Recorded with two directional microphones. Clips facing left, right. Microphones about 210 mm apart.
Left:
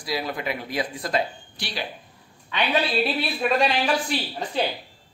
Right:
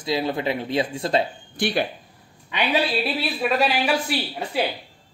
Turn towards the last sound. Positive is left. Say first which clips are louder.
# right 1 dB
turn(degrees=-10)  # may be behind; listen again after turning